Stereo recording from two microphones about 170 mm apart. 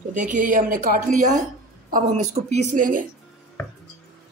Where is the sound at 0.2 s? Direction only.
50° right (ahead or behind).